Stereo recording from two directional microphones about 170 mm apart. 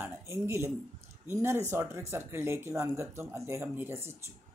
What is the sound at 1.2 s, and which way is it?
Speech, 15° right (ahead or behind).